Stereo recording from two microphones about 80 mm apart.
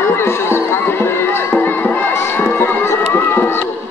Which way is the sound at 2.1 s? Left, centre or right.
Left.